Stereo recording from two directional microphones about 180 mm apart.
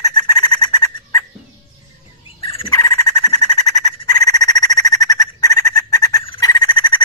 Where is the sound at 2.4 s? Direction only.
30° left (ahead or behind).